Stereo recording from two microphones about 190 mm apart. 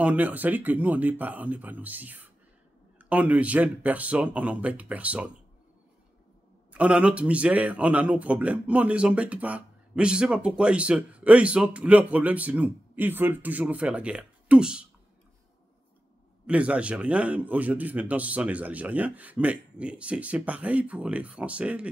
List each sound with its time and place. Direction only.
0.0 s speech: 10° right (ahead or behind)
6.7 s speech: 5° right (ahead or behind)
16.4 s speech: 5° right (ahead or behind)